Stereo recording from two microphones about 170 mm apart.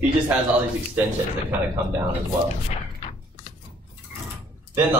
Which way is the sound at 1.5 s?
10° right (ahead or behind).